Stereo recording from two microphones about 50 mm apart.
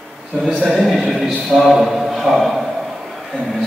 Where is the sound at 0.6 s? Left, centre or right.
Centre.